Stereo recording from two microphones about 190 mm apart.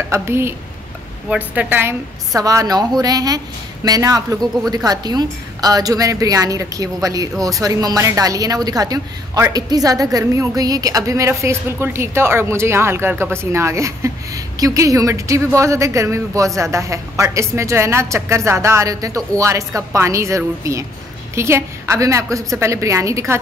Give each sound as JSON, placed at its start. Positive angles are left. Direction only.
{"t": 0.1, "sound": "a woman's voice", "side_deg": -15}